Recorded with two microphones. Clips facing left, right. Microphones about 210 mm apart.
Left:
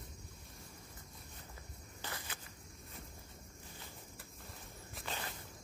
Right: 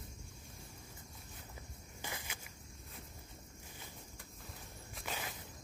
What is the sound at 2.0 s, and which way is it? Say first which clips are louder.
Insect: even; 15° right (ahead or behind).